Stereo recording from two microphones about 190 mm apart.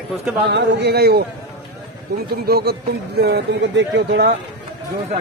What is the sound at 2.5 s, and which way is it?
Speech, 55° right (ahead or behind).